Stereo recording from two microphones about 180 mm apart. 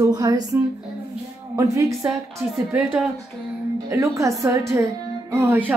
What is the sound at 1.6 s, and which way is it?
Speech, 15° right (ahead or behind).